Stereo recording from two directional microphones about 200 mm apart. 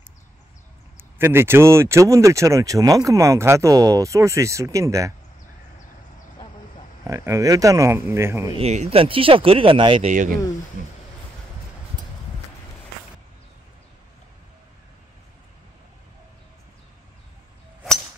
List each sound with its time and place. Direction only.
0.9 s speech: 10° right (ahead or behind)
7.1 s speech: 15° right (ahead or behind)
8.5 s speech: 35° right (ahead or behind)
10.1 s speech: 40° right (ahead or behind)